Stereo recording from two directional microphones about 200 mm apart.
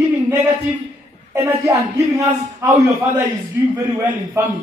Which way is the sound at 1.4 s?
15° right (ahead or behind).